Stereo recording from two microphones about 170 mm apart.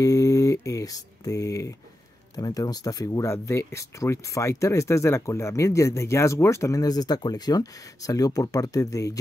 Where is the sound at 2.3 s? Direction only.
20° left (ahead or behind).